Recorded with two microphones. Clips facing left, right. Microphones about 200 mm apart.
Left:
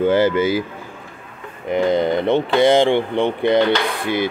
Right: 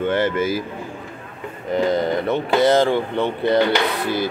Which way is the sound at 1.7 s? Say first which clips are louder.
Left 2 dB; 20° left (ahead or behind).